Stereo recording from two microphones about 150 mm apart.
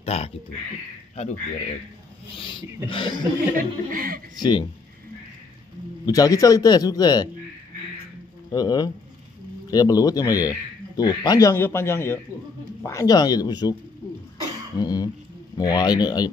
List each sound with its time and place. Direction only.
0.0 s speech: 45° left (ahead or behind)
2.3 s a sound: 35° left (ahead or behind)
2.9 s speech: 30° left (ahead or behind)
3.5 s speech: 70° right (ahead or behind)
4.4 s a man's voice: 30° left (ahead or behind)
6.0 s a man's voice: 25° left (ahead or behind)
8.5 s a man's voice: 25° left (ahead or behind)
14.8 s a man's voice: 25° left (ahead or behind)